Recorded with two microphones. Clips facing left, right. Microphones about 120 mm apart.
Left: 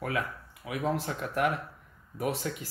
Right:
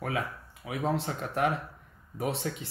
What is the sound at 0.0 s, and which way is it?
Speech, 25° right (ahead or behind).